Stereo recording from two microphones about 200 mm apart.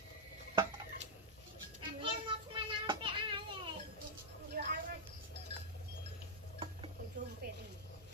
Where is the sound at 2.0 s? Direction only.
25° right (ahead or behind).